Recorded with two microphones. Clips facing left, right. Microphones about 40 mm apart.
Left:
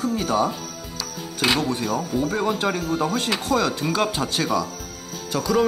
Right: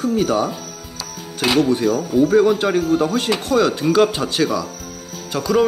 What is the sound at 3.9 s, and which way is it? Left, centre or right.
Speech, centre.